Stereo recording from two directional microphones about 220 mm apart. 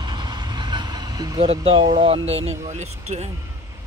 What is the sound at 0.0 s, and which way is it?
Vehicle, 20° right (ahead or behind).